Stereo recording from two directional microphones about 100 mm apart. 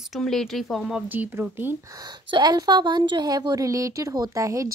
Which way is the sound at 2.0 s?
45° right (ahead or behind).